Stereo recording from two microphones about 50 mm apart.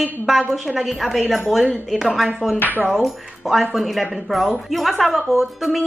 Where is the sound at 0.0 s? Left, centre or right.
Centre.